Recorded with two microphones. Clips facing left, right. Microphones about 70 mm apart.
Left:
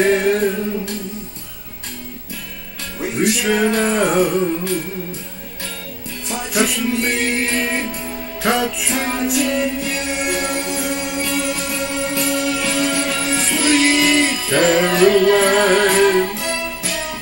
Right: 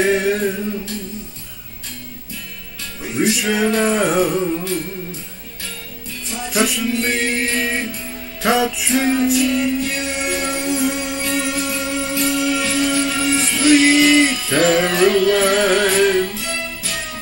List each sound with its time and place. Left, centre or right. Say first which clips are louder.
0.0 s music: left 2 dB; centre
3.1 s music: left 1 dB; centre
6.3 s music: even; centre
9.3 s music: right 1 dB; left
9.8 s music: left 1 dB; centre
16.3 s music: left 3 dB; left